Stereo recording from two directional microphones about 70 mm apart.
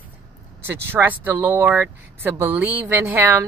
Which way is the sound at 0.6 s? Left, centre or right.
Right.